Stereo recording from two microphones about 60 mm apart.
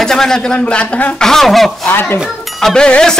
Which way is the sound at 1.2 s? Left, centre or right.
Centre.